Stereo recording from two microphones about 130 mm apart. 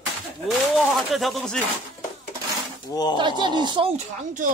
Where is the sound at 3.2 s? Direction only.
35° right (ahead or behind).